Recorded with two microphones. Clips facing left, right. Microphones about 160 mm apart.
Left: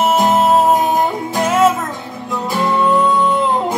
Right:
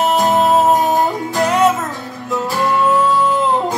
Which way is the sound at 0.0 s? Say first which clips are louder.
Left 1 dB; centre (ahead or behind).